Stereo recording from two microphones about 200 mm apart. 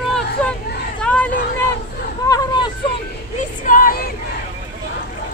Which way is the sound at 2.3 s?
20° left (ahead or behind).